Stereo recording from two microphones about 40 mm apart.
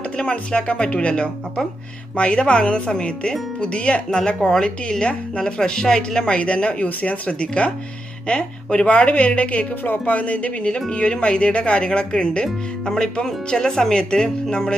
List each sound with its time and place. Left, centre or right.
0.2 s speech: left
6.3 s a woman's voice: left